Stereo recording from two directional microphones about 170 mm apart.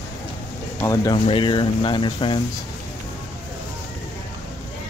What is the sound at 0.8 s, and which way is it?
Speech, 20° left (ahead or behind).